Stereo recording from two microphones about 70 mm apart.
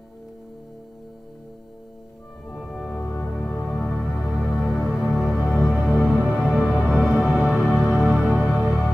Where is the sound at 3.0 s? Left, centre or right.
Left.